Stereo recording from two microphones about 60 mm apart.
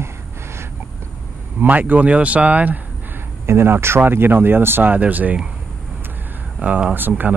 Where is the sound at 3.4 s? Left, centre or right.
Right.